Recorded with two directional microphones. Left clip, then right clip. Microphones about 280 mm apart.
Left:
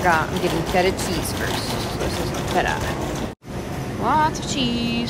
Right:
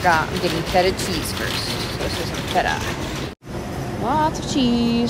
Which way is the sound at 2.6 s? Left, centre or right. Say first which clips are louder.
Right 2 dB; centre.